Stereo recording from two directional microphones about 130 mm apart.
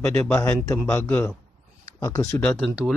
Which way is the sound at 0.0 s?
10° left (ahead or behind).